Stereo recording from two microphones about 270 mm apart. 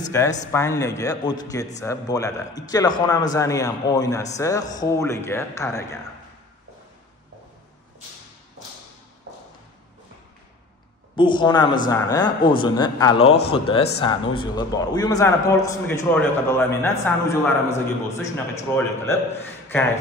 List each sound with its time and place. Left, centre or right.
0.1 s a man's voice: centre
11.1 s a man's voice: centre